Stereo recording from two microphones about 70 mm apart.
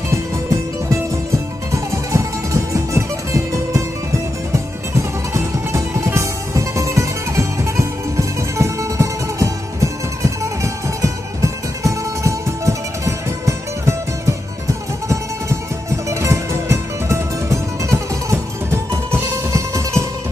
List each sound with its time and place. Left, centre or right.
1.7 s music: right